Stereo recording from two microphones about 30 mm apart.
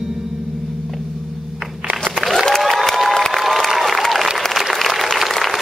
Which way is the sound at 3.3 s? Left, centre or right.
Centre.